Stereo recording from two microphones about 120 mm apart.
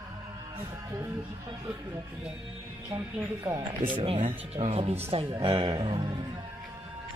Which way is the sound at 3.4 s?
25° right (ahead or behind).